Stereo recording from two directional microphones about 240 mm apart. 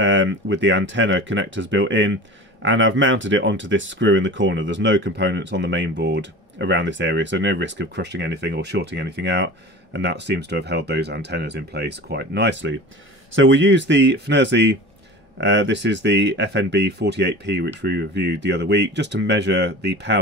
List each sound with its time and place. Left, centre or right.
0.0 s speech: right